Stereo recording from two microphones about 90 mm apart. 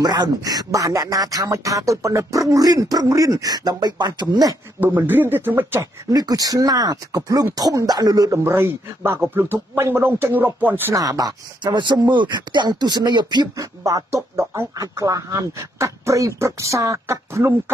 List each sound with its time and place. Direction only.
0.0 s speech: 45° right (ahead or behind)
4.7 s speech: 20° right (ahead or behind)
6.0 s speech: 45° right (ahead or behind)
8.5 s speech: 30° right (ahead or behind)
11.0 s speech: 40° right (ahead or behind)
11.6 s speech: 60° right (ahead or behind)
13.8 s speech: 35° right (ahead or behind)